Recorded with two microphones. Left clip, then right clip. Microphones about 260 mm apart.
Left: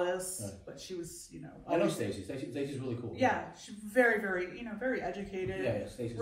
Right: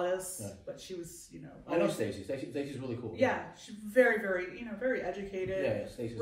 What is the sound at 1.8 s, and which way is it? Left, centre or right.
Speech, centre.